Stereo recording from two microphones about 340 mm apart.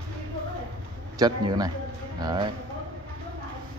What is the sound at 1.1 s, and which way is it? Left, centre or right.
Speech, centre.